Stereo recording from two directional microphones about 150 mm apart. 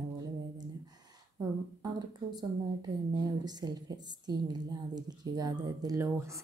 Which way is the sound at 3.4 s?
25° right (ahead or behind).